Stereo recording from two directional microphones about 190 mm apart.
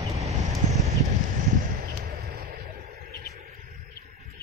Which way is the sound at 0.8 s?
40° right (ahead or behind).